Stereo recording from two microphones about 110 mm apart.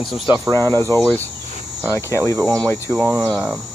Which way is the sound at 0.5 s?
25° left (ahead or behind).